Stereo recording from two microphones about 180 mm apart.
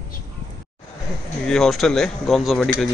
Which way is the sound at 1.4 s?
5° left (ahead or behind).